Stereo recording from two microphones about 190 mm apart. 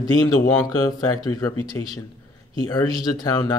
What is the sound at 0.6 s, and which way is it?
Speech, 20° left (ahead or behind).